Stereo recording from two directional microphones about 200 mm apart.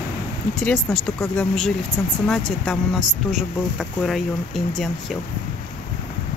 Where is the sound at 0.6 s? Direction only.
5° left (ahead or behind).